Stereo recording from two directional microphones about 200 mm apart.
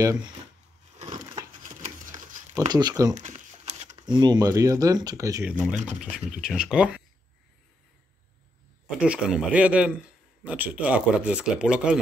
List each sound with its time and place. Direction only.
0.0 s speech: 15° right (ahead or behind)
1.1 s a sound: 20° right (ahead or behind)
1.6 s crumpling: 40° right (ahead or behind)
2.7 s speech: 20° right (ahead or behind)
3.2 s a sound: 35° right (ahead or behind)
3.9 s speech: 20° right (ahead or behind); by 7.0 s 5° right (ahead or behind)
9.0 s speech: 5° right (ahead or behind)